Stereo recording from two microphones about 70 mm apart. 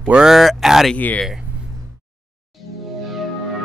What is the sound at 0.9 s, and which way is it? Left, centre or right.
Speech, left.